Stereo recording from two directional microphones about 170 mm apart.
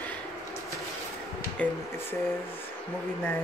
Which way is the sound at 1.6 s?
10° left (ahead or behind).